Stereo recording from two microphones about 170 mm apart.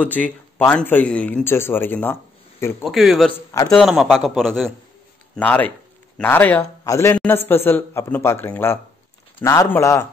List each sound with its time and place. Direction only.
0.0 s speech: 10° left (ahead or behind)
2.8 s speech: centre (ahead or behind); by 10.0 s 15° left (ahead or behind)